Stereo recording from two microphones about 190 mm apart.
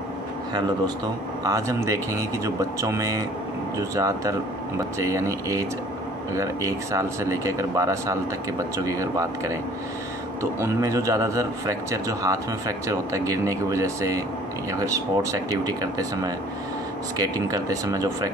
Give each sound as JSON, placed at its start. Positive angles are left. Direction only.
{"t": 1.4, "sound": "a man's voice", "side_deg": -15}